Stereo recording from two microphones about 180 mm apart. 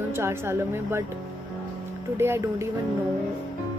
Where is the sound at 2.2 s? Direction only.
15° right (ahead or behind).